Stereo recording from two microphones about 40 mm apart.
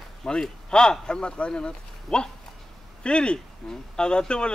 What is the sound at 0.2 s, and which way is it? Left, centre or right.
A man's voice, centre.